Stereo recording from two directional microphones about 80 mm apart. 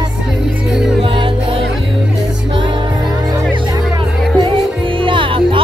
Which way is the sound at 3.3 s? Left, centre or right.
Right.